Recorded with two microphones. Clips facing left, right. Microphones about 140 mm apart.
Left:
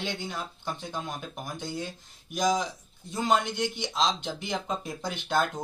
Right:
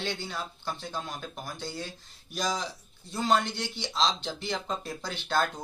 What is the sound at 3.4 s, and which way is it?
Speech, 20° left (ahead or behind).